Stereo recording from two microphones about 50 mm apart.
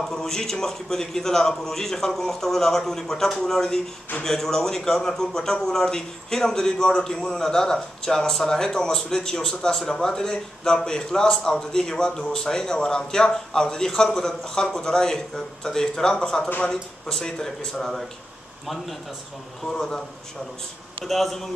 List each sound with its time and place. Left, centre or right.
0.0 s a man's voice: centre
19.7 s a man's voice: centre
21.0 s a man's voice: centre